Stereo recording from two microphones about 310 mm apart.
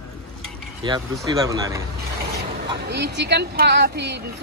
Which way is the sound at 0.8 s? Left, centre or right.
Centre.